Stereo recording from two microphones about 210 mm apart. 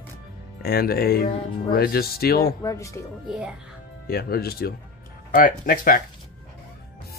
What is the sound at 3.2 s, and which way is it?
Speech, 5° right (ahead or behind).